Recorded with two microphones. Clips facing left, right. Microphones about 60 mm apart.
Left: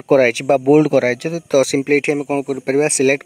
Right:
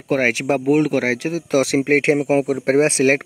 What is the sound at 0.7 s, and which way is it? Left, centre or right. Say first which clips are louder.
Speech: left 5 dB; centre.